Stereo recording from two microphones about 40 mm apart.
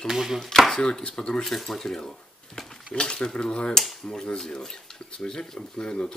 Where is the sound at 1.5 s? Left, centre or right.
Centre.